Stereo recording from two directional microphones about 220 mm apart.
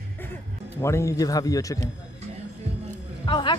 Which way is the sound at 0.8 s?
15° left (ahead or behind).